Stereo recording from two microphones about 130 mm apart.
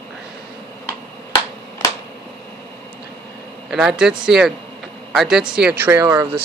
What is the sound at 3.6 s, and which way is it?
Speech, 5° right (ahead or behind).